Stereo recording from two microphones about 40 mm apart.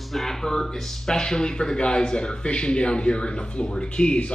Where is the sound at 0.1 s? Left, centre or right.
Centre.